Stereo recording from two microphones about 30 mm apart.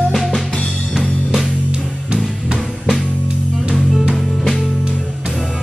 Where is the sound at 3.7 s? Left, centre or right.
Right.